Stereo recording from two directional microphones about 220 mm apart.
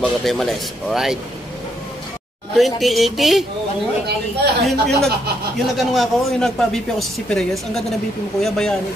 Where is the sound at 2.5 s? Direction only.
Centre (ahead or behind).